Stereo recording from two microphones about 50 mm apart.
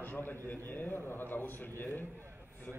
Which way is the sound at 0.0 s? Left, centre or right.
Left.